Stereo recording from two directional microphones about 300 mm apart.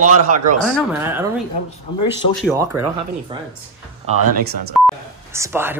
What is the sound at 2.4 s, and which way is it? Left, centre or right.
Speech, centre.